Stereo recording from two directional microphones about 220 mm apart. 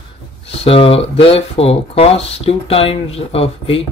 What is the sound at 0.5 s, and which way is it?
Speech, 25° left (ahead or behind).